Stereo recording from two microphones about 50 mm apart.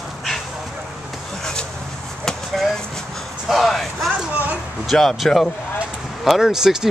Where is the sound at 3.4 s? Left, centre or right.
Centre.